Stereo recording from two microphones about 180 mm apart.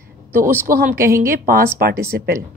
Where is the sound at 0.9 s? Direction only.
15° right (ahead or behind).